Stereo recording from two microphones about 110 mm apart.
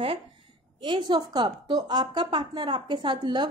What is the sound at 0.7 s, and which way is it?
A woman's voice, 45° right (ahead or behind).